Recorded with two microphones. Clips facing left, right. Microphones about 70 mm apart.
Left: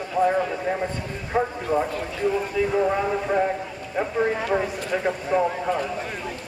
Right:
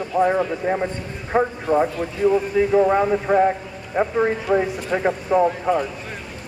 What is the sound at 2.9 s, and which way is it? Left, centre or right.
Speech, right.